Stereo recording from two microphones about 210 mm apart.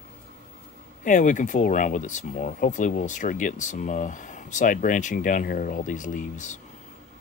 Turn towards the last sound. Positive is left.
turn(degrees=35)  # may be behind; listen again after turning